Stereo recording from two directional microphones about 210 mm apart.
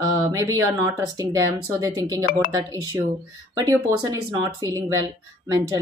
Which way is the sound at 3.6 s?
15° right (ahead or behind).